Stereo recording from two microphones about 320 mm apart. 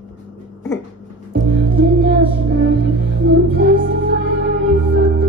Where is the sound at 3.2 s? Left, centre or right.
Right.